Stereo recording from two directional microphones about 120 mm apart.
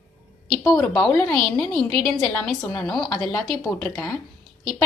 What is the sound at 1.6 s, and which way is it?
A woman's voice, 5° left (ahead or behind).